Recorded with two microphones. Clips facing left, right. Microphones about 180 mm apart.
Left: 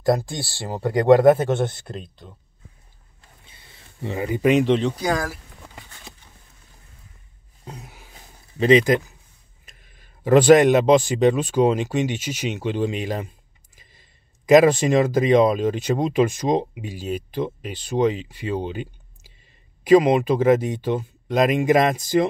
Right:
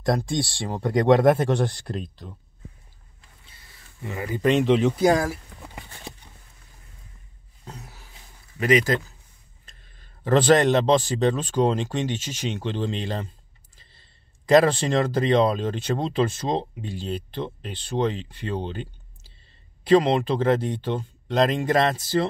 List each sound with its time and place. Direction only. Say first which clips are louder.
0.0 s speech: left 2 dB; 5° left (ahead or behind)
4.0 s speech: left 5 dB; 25° left (ahead or behind)
4.4 s speech: left 2 dB; 5° left (ahead or behind)
5.1 s a sound: right 3 dB; 20° right (ahead or behind)
7.6 s a sound: left 2 dB; 15° left (ahead or behind)
8.5 s a man's voice: left 5 dB; 25° left (ahead or behind)